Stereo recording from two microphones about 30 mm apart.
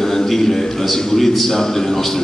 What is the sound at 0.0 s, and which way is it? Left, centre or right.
A man's voice, centre.